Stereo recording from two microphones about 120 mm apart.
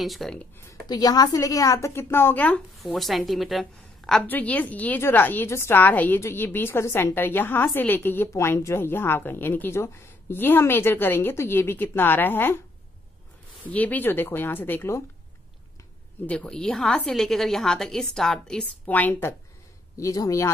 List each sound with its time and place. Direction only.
0.0 s a woman's voice: centre (ahead or behind)
0.8 s a woman's voice: 30° left (ahead or behind); by 2.6 s 15° left (ahead or behind)
2.8 s a woman's voice: centre (ahead or behind)
4.2 s a woman's voice: 15° left (ahead or behind)
13.7 s a woman's voice: 15° left (ahead or behind)
16.3 s a woman's voice: 10° left (ahead or behind)
20.0 s a woman's voice: 30° left (ahead or behind)